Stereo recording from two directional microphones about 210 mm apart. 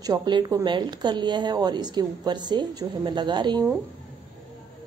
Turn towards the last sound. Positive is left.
turn(degrees=-20)  # may be behind; listen again after turning